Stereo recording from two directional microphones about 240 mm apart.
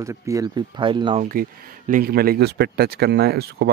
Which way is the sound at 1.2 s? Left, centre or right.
Right.